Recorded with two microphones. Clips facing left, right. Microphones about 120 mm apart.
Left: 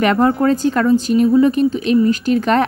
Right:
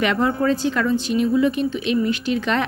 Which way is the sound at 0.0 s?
45° left (ahead or behind).